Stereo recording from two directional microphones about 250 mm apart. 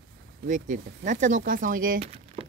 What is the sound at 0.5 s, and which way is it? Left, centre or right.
Speech, right.